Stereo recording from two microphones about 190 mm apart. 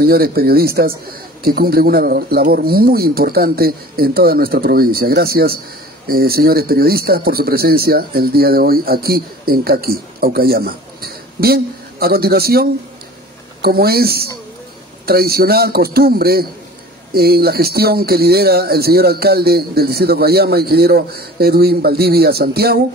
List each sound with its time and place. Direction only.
0.0 s speech: 55° right (ahead or behind)